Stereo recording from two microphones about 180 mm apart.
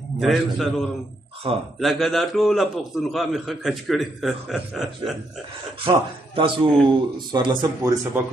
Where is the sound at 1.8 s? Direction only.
Centre (ahead or behind).